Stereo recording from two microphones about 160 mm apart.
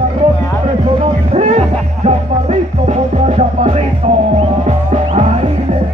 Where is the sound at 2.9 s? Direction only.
45° right (ahead or behind).